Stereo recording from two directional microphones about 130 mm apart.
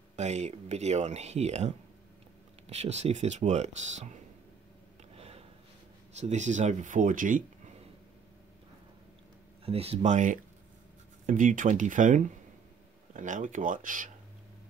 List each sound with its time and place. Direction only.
0.1 s speech: 60° right (ahead or behind)
5.1 s a sound: 50° right (ahead or behind)
6.1 s speech: 65° right (ahead or behind); by 7.7 s 90° right
9.7 s speech: 50° right (ahead or behind)
10.1 s speech: 90° right